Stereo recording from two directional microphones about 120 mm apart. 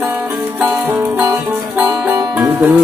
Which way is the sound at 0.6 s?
15° right (ahead or behind).